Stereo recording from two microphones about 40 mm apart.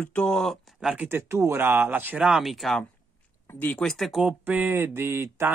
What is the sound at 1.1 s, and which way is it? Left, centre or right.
Speech, right.